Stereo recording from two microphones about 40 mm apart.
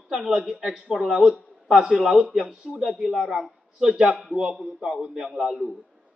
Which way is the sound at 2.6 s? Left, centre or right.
Right.